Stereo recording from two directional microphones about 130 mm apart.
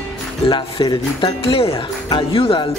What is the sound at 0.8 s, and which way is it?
Speech, 40° left (ahead or behind).